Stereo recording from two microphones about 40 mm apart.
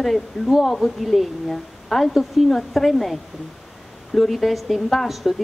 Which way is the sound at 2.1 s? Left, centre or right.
Centre.